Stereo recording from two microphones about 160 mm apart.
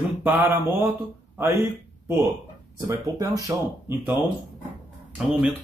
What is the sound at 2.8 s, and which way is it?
Speech, 20° right (ahead or behind).